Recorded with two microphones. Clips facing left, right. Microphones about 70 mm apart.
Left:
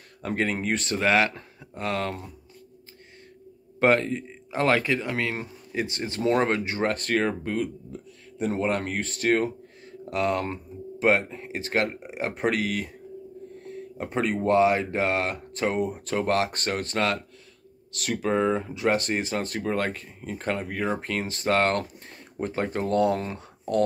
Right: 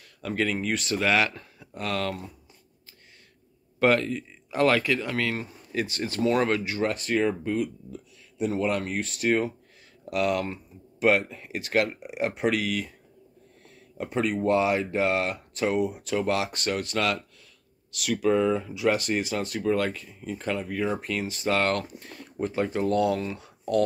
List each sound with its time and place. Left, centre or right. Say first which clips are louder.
0.2 s speech: even; left
3.8 s speech: left 1 dB; left
6.9 s speech: even; left
18.2 s speech: right 1 dB; left